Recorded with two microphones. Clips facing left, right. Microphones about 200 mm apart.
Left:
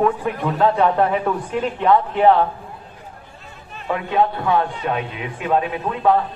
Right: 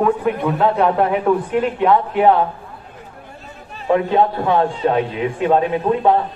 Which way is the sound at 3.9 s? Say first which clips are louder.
Right 4 dB; 25° right (ahead or behind).